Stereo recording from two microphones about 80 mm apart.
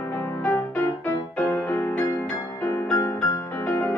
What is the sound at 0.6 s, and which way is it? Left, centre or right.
Music, left.